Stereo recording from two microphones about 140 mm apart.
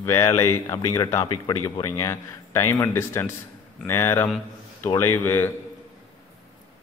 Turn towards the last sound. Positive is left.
turn(degrees=15)  # may be behind; listen again after turning